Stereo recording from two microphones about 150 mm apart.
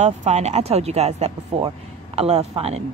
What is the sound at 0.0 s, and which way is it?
Speech, 50° right (ahead or behind).